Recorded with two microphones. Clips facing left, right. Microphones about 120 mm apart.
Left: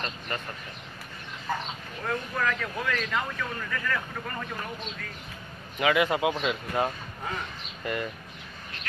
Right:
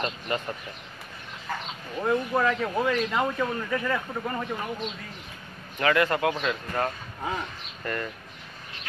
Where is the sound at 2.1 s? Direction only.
25° right (ahead or behind).